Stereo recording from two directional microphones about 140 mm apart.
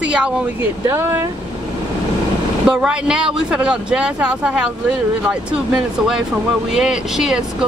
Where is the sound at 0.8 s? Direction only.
20° right (ahead or behind).